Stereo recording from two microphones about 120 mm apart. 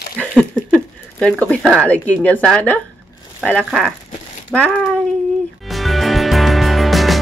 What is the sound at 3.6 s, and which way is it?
Speech, centre (ahead or behind).